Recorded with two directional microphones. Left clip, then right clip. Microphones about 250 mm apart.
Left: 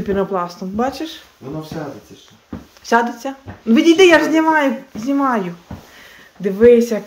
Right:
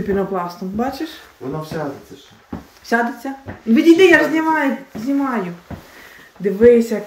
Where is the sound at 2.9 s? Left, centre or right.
Centre.